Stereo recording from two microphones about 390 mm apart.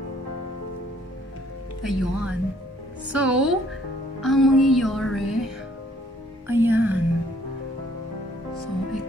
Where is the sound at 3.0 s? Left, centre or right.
Centre.